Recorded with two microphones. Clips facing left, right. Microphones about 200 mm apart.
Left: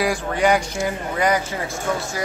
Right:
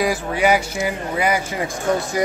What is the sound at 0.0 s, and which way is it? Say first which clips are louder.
Speech: right 1 dB; 5° right (ahead or behind).